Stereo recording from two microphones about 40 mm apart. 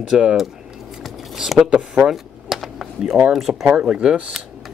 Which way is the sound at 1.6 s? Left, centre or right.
Right.